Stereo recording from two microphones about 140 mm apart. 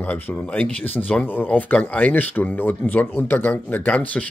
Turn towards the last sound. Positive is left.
turn(degrees=10)  # may be behind; listen again after turning